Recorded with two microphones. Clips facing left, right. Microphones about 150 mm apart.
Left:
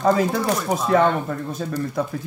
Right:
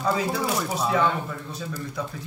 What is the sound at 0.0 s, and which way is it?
Speech, 50° left (ahead or behind).